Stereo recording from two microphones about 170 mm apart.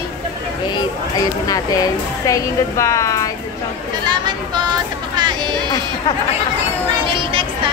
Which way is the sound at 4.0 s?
25° right (ahead or behind).